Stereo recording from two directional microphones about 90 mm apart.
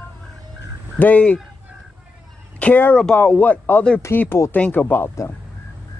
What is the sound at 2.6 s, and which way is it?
Speech, 15° left (ahead or behind).